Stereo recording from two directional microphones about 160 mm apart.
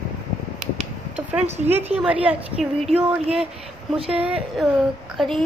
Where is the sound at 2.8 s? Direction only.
40° right (ahead or behind).